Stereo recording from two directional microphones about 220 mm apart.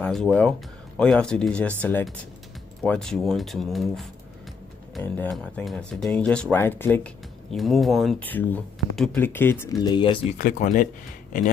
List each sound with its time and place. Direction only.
0.0 s speech: 5° left (ahead or behind); by 10.2 s 20° left (ahead or behind)
10.3 s speech: 35° left (ahead or behind)